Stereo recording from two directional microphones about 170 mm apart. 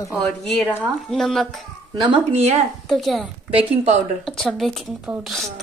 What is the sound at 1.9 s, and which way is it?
Speech, 25° right (ahead or behind).